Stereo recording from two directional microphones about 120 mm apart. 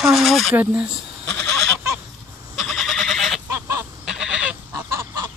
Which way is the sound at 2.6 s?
Centre (ahead or behind).